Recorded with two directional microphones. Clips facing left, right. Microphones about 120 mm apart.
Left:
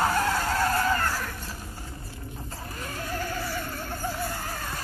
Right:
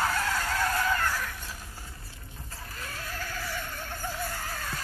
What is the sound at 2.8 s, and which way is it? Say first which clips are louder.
Neigh: left 6 dB; 45° left (ahead or behind).